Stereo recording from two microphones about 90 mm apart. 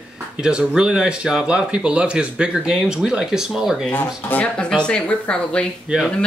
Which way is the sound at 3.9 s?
20° left (ahead or behind).